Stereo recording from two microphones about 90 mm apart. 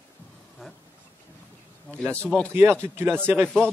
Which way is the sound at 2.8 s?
25° right (ahead or behind).